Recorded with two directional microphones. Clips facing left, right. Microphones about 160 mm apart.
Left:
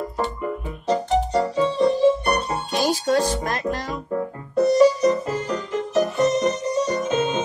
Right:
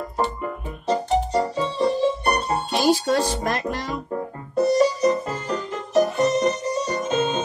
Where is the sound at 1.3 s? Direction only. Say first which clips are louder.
Left 2 dB; 35° right (ahead or behind).